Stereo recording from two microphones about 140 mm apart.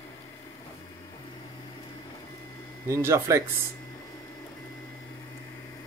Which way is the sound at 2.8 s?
20° right (ahead or behind).